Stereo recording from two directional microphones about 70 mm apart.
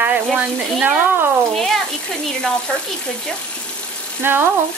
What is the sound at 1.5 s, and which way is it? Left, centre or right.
Speech, centre.